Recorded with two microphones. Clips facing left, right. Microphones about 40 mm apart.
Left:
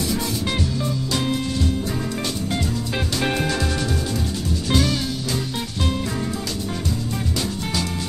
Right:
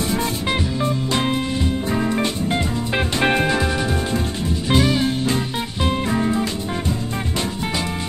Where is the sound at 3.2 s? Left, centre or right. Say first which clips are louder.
Right 5 dB; right.